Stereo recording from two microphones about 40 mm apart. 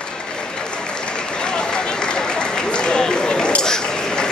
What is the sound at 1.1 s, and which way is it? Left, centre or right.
Applause, left.